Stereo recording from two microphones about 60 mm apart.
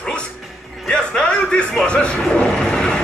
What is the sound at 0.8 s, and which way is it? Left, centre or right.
Music, centre.